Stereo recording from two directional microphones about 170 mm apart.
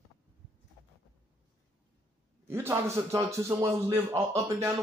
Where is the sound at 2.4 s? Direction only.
15° right (ahead or behind).